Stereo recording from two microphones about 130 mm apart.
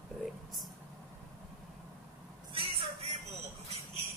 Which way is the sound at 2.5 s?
50° right (ahead or behind).